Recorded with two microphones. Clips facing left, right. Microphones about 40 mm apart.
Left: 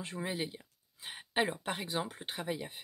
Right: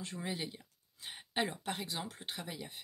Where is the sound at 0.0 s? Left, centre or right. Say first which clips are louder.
Left 3 dB; centre.